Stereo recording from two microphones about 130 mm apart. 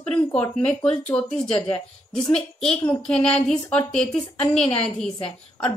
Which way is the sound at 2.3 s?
50° left (ahead or behind).